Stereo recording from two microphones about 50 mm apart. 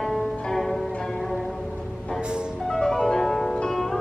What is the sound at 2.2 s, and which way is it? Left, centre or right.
Music, centre.